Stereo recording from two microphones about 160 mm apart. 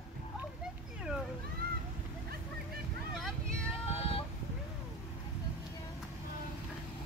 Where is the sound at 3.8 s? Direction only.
35° left (ahead or behind).